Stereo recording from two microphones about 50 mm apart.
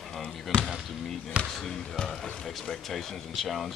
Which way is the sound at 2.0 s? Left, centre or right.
Centre.